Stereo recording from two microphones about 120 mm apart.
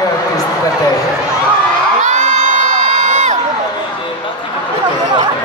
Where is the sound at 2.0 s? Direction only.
90° right.